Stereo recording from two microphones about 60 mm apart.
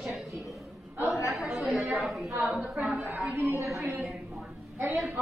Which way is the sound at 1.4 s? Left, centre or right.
Centre.